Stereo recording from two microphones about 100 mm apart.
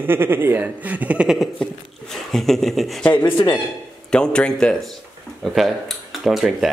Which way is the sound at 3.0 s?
15° left (ahead or behind).